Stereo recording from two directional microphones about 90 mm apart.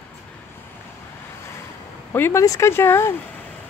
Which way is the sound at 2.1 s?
25° left (ahead or behind).